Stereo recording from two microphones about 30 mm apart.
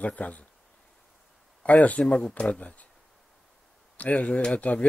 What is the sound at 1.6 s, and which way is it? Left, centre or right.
Speech, left.